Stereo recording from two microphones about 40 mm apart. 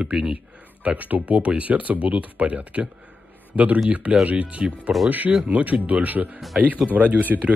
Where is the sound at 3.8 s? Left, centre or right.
Right.